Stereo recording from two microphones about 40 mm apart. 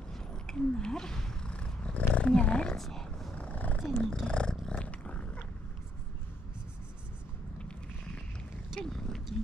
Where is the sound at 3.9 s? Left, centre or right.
Centre.